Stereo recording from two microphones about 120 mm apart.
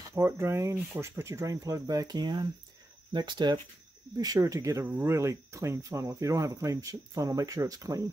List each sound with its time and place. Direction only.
0.1 s speech: 25° right (ahead or behind)